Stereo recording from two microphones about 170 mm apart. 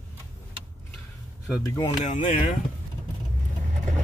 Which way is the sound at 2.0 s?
50° left (ahead or behind).